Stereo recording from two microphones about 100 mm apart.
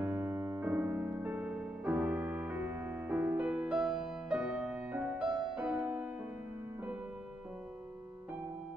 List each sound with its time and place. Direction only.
0.0 s piano: 25° right (ahead or behind)
0.7 s music: 20° right (ahead or behind)